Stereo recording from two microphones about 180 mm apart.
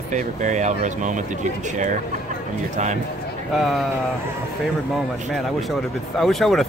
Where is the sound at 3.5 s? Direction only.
Centre (ahead or behind).